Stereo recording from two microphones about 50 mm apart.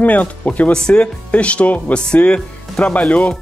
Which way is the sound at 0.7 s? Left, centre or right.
Centre.